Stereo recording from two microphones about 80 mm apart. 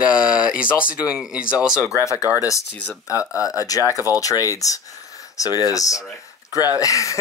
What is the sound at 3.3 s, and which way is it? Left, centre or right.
Speech, left.